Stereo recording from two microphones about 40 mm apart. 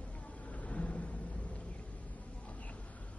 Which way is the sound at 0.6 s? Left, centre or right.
Left.